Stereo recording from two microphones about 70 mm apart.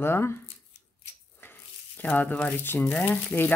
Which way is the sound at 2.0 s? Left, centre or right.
Centre.